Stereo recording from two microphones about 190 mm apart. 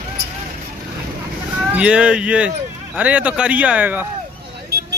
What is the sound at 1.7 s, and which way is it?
Speech, 5° right (ahead or behind).